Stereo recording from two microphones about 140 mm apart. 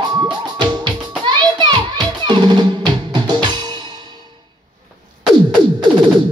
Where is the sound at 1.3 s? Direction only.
35° right (ahead or behind).